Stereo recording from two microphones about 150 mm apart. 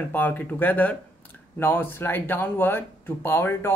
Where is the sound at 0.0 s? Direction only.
10° left (ahead or behind).